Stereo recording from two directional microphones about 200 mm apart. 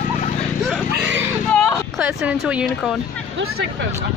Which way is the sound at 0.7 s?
5° right (ahead or behind).